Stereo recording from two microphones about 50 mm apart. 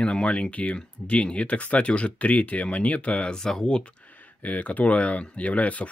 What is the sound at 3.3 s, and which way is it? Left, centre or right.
Speech, centre.